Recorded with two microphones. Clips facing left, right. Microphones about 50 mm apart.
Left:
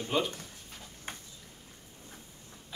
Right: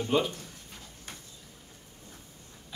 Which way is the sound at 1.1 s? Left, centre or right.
Left.